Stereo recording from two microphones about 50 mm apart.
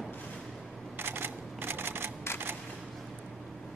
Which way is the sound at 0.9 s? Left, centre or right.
Right.